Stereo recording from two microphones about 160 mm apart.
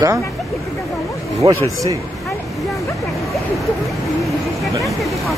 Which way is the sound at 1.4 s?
25° right (ahead or behind).